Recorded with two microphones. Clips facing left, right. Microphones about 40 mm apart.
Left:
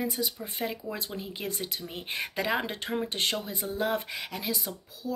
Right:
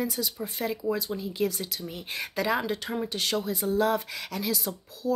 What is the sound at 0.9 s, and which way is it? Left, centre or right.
Speech, left.